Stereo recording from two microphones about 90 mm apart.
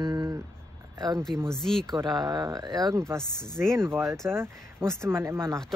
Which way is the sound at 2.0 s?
45° right (ahead or behind).